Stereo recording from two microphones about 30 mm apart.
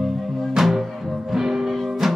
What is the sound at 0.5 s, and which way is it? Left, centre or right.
Music, centre.